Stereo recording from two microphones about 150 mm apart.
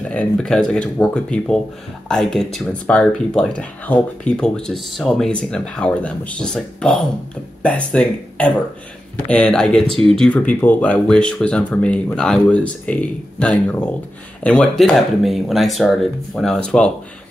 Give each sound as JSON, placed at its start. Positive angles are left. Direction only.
{"t": 0.1, "sound": "speech", "side_deg": 5}